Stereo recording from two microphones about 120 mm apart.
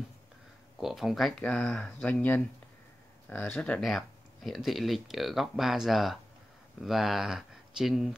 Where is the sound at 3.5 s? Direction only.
10° left (ahead or behind).